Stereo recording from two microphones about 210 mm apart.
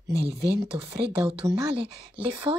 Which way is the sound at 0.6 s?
25° right (ahead or behind).